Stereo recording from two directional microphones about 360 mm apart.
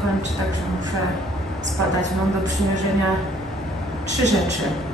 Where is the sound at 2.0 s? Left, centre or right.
Right.